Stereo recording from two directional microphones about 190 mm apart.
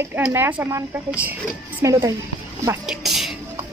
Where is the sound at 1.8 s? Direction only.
15° right (ahead or behind).